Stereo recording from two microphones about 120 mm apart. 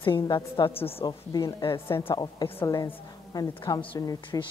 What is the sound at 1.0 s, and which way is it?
Speech, 35° left (ahead or behind).